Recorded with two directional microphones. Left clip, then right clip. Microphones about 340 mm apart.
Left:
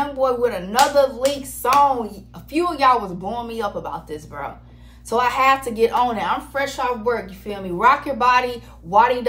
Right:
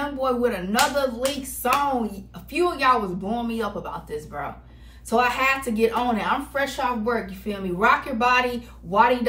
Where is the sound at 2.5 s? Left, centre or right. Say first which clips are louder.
Left 3 dB; centre.